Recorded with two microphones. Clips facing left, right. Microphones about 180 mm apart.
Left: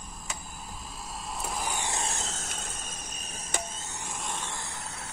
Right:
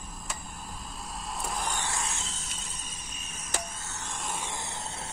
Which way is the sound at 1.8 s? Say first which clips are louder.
Left 1 dB; 20° left (ahead or behind).